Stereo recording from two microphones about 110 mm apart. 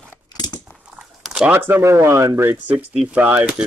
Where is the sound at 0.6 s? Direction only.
10° right (ahead or behind).